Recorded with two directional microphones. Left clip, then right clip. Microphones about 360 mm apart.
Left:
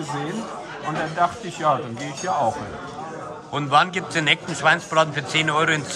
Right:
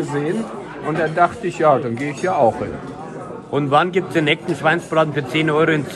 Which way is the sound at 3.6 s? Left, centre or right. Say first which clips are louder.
Right 3 dB; centre.